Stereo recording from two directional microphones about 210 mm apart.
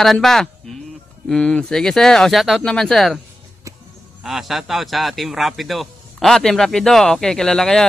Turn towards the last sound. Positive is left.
turn(degrees=5)  # may be behind; listen again after turning